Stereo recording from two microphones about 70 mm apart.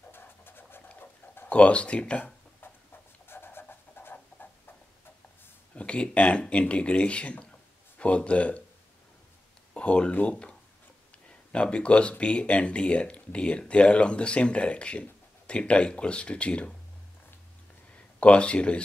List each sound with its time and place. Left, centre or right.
0.1 s scratch: left
0.8 s a sound: left
3.3 s a sound: left
5.8 s speech: centre
9.8 s speech: centre
17.9 s speech: centre